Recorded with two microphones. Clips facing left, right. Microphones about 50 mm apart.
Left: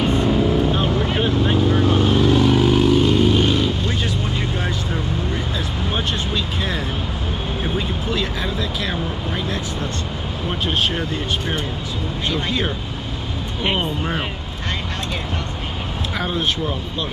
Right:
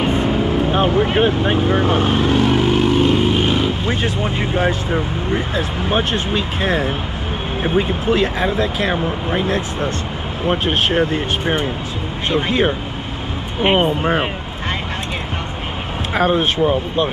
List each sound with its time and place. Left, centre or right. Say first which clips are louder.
0.0 s vehicle: right 1 dB; right
5.9 s speech: right 5 dB; right
16.2 s speech: right 8 dB; right